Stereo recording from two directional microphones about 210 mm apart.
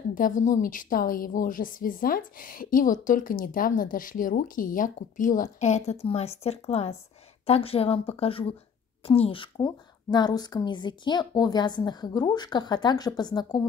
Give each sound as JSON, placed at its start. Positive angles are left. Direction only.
{"t": 0.1, "sound": "a woman's voice", "side_deg": 40}